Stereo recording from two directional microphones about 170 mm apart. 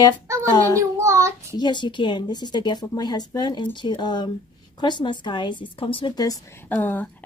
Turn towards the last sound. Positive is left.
turn(degrees=10)  # may be behind; listen again after turning